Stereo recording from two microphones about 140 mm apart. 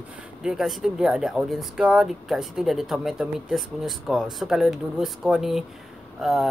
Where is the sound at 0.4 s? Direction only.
5° right (ahead or behind).